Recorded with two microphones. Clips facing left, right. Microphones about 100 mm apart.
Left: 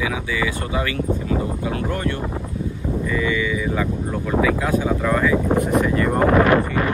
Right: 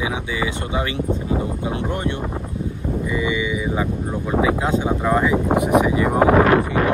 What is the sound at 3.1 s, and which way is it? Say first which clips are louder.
Speech: left 1 dB; 20° right (ahead or behind).